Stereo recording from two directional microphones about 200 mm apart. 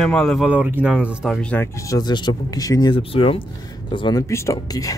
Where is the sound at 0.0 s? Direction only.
Centre (ahead or behind).